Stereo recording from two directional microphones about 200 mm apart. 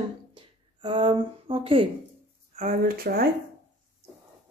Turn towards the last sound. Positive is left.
turn(degrees=-50)  # may be behind; listen again after turning